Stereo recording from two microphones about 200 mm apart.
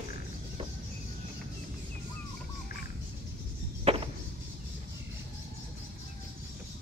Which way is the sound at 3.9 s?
30° right (ahead or behind).